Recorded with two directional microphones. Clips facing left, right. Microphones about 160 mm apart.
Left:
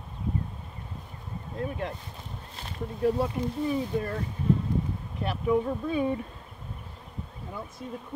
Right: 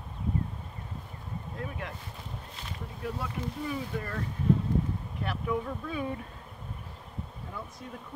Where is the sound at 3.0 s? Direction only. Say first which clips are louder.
Left 10 dB; 30° left (ahead or behind).